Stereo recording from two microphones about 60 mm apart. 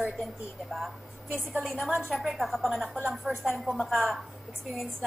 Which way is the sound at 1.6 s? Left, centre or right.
Centre.